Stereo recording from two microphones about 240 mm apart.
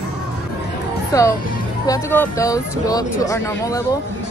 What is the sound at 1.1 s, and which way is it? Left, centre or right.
Speech, centre.